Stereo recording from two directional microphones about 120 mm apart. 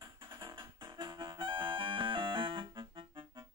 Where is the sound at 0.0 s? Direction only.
40° right (ahead or behind).